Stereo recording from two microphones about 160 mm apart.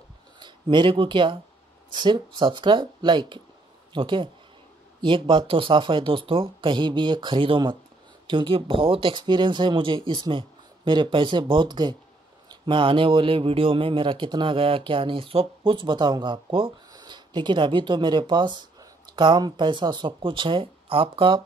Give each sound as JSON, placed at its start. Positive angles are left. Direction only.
{"t": 0.4, "sound": "speech", "side_deg": -30}